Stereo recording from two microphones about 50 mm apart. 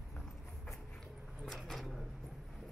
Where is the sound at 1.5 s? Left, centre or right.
Centre.